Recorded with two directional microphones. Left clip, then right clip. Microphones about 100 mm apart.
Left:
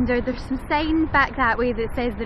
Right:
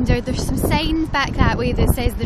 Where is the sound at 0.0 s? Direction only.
20° right (ahead or behind).